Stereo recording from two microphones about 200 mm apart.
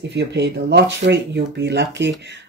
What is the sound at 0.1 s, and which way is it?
Speech, 60° right (ahead or behind).